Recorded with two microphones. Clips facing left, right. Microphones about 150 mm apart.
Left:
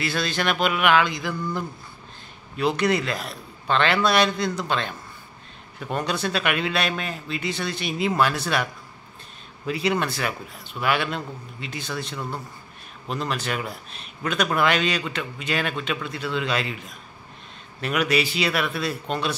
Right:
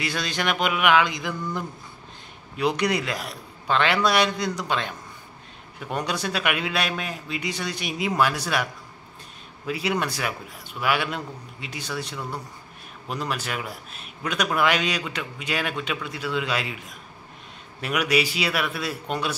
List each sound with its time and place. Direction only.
0.0 s a man's voice: 15° right (ahead or behind)
2.5 s a man's voice: 15° right (ahead or behind)
9.7 s a man's voice: 10° right (ahead or behind)